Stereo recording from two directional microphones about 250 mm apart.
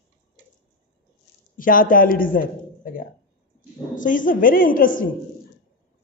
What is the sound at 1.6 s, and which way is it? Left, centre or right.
A woman's voice, left.